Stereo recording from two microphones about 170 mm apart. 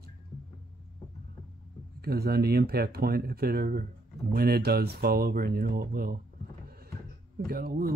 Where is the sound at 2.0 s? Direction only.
65° right (ahead or behind).